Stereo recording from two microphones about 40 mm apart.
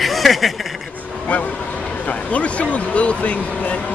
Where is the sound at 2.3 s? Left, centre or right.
Left.